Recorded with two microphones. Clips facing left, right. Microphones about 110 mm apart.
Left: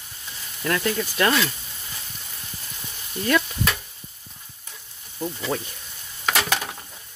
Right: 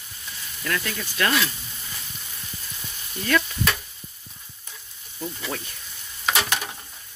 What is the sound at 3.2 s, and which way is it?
Speech, 25° left (ahead or behind).